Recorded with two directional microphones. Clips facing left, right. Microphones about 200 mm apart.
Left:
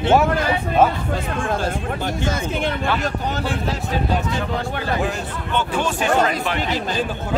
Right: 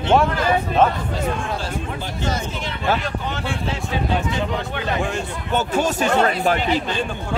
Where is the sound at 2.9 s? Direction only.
40° left (ahead or behind).